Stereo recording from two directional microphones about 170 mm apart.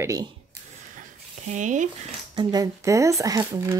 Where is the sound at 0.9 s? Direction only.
50° right (ahead or behind).